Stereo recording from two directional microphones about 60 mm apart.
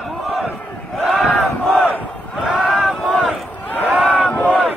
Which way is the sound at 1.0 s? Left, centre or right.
Centre.